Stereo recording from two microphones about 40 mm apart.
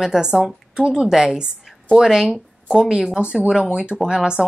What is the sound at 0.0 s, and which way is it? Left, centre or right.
A woman's voice, centre.